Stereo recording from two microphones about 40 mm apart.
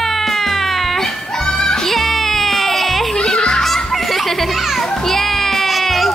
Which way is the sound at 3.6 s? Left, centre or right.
Centre.